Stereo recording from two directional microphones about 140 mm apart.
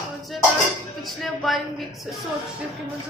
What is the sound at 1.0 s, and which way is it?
Speech, centre (ahead or behind).